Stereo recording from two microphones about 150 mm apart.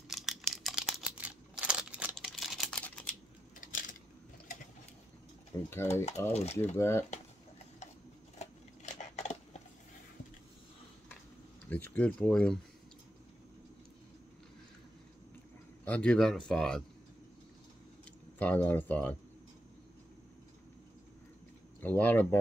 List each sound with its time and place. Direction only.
0.1 s a sound: centre (ahead or behind)
2.1 s typing: centre (ahead or behind)
3.6 s a sound: 60° left (ahead or behind)
5.7 s speech: 15° left (ahead or behind)
6.3 s speech: 45° left (ahead or behind)
6.7 s speech: 15° left (ahead or behind)
11.7 s speech: 10° left (ahead or behind)
15.8 s speech: 10° left (ahead or behind)
18.4 s speech: 10° left (ahead or behind)
21.8 s speech: 10° left (ahead or behind)